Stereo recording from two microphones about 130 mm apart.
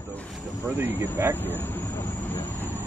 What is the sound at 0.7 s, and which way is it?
Speech, 15° right (ahead or behind).